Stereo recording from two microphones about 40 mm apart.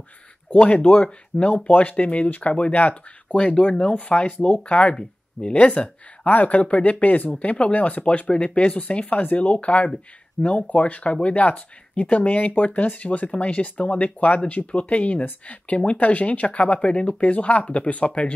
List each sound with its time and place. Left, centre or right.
0.8 s speech: left
1.6 s speech: left
3.5 s speech: left
7.2 s speech: left